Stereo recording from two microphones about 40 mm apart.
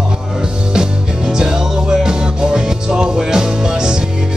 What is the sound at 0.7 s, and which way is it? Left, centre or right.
Music, centre.